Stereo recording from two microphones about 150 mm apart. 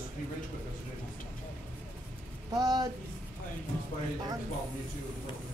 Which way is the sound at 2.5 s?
25° right (ahead or behind).